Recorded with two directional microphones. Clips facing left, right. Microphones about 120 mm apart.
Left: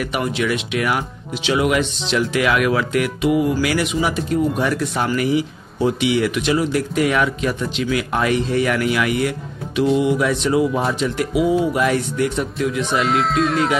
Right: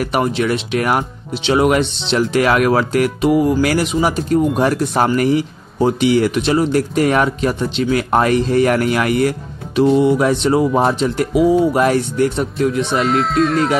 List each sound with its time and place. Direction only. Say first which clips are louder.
0.0 s speech: right 4 dB; 35° right (ahead or behind)
13.0 s speech: right 3 dB; centre (ahead or behind)